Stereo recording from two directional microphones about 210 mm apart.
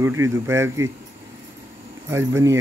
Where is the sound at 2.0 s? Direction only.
15° right (ahead or behind).